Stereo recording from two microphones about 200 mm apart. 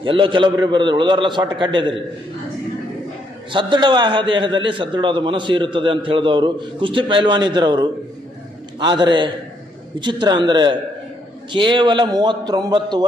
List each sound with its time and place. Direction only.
0.0 s a man's voice: 25° right (ahead or behind)
3.5 s a man's voice: 25° right (ahead or behind)